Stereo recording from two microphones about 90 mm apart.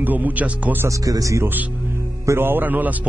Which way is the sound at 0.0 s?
20° right (ahead or behind).